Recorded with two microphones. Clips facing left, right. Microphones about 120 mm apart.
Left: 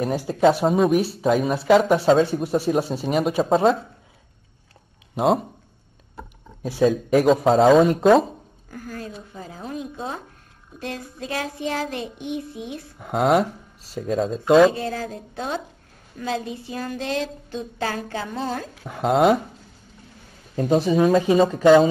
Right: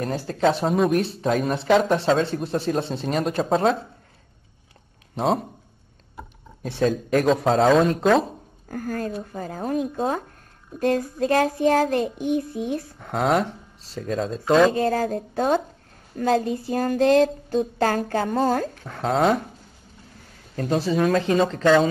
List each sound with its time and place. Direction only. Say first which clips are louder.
0.0 s speech: left 3 dB; 10° left (ahead or behind)
5.1 s speech: left 3 dB; centre (ahead or behind)
6.6 s speech: left 3 dB; 5° left (ahead or behind)
8.6 s a sound: right 7 dB; 50° right (ahead or behind)
13.0 s speech: left 3 dB; 5° left (ahead or behind)
14.7 s a sound: right 6 dB; 45° right (ahead or behind)
18.8 s speech: left 3 dB; 5° left (ahead or behind)
20.5 s speech: left 4 dB; 15° left (ahead or behind)